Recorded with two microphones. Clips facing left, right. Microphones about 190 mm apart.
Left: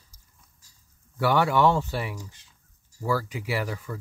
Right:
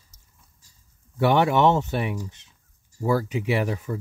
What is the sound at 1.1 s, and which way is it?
Speech, 20° right (ahead or behind).